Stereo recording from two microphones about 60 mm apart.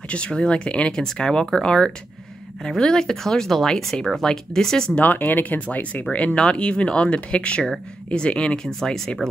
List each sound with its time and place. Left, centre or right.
0.1 s speech: centre
4.9 s speech: left
8.7 s speech: centre